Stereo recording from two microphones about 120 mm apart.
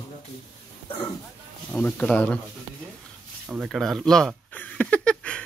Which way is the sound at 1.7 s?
15° left (ahead or behind).